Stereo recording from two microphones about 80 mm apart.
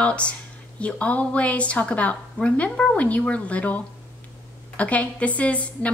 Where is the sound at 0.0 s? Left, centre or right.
Centre.